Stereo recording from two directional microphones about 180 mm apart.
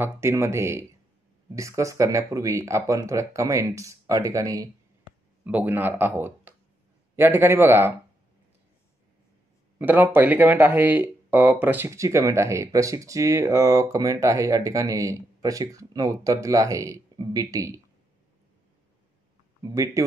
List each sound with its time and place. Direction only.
0.0 s speech: 15° right (ahead or behind)
9.8 s speech: 10° right (ahead or behind)
19.6 s speech: 20° right (ahead or behind)